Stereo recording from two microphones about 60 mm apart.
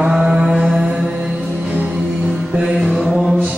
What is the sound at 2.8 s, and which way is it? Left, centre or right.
Mantra, centre.